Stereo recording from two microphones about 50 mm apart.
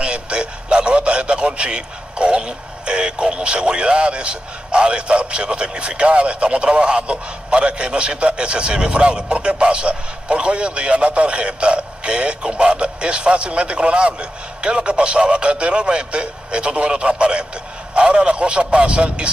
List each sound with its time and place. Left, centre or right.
0.0 s a man's voice: right